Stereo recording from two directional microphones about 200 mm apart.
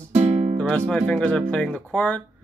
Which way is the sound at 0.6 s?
5° left (ahead or behind).